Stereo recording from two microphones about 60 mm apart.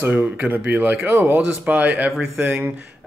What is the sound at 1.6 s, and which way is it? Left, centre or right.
A man's voice, right.